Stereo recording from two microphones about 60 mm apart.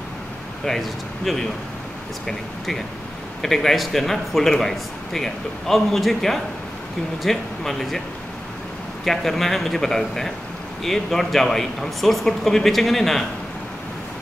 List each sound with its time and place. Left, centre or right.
0.7 s speech: centre
9.0 s speech: centre